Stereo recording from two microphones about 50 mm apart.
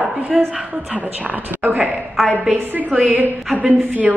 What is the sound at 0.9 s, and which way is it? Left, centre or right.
Speech, right.